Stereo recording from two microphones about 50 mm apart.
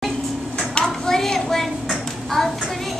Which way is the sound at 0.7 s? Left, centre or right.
Centre.